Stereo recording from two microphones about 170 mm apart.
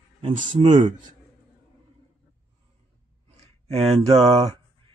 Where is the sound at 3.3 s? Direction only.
35° right (ahead or behind).